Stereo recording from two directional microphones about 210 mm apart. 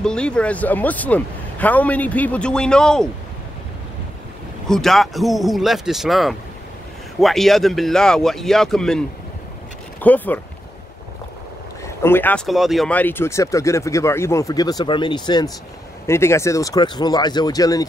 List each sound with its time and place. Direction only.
0.0 s speech: 5° left (ahead or behind)
4.6 s speech: centre (ahead or behind)
11.8 s speech: 10° left (ahead or behind)